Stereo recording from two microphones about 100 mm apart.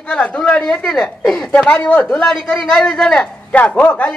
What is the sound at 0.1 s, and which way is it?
A woman's voice, 10° left (ahead or behind).